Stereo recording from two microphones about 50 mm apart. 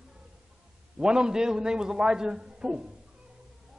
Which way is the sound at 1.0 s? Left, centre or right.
Centre.